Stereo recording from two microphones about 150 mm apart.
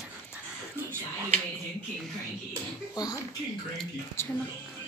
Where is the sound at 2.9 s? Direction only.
25° left (ahead or behind).